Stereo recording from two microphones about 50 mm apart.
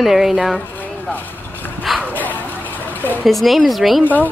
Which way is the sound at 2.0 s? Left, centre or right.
Left.